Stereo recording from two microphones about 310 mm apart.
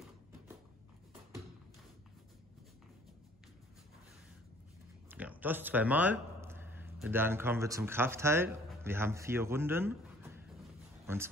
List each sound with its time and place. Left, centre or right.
5.1 s a man's voice: centre